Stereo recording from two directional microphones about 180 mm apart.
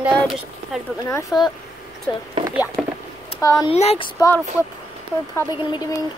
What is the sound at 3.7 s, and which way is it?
Speech, 35° left (ahead or behind).